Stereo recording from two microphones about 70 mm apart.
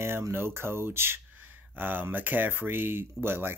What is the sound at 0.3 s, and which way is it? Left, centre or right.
Speech, right.